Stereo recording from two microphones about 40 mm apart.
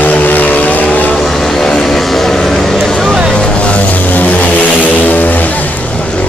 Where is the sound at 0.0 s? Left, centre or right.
Left.